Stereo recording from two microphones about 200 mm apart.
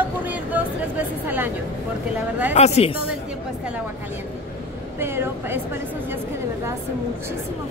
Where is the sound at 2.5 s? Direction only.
30° left (ahead or behind).